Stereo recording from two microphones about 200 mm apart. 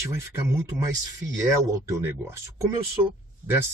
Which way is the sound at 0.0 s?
15° right (ahead or behind).